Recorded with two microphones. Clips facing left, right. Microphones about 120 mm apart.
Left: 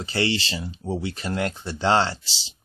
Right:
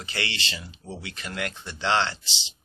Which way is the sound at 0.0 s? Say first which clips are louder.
Left 8 dB; 30° left (ahead or behind).